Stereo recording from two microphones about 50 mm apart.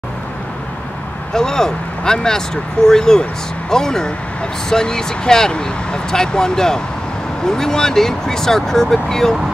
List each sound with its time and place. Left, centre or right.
1.3 s speech: centre